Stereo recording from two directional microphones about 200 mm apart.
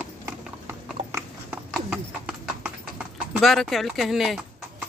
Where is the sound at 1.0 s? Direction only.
35° right (ahead or behind).